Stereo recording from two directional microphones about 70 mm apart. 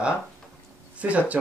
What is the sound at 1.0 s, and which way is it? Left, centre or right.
Speech, centre.